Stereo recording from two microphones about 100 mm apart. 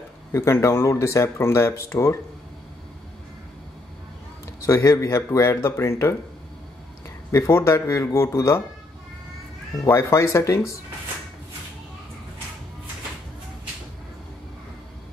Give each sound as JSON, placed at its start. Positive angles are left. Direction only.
{"t": 0.3, "sound": "speech", "side_deg": 30}
{"t": 4.6, "sound": "speech", "side_deg": 30}
{"t": 7.2, "sound": "speech", "side_deg": 30}
{"t": 9.8, "sound": "speech", "side_deg": 30}